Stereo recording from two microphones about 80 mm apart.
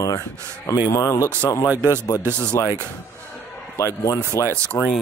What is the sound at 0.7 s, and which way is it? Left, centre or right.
Speech, left.